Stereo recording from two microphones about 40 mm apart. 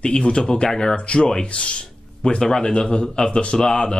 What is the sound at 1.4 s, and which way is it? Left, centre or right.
Speech, left.